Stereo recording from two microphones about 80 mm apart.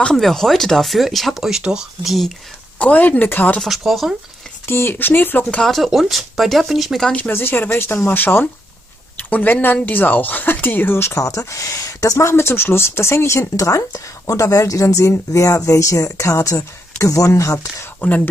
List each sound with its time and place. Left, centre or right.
0.0 s speech: centre
2.8 s speech: centre
3.6 s speech: centre
4.6 s speech: left
5.6 s speech: centre
7.1 s speech: centre; by 17.8 s left